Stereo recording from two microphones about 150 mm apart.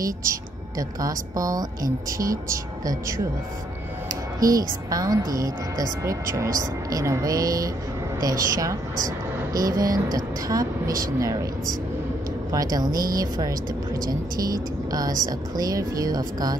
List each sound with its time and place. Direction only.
0.3 s a woman's voice: 20° right (ahead or behind)
12.5 s a woman's voice: 25° right (ahead or behind)
14.9 s a woman's voice: 25° right (ahead or behind)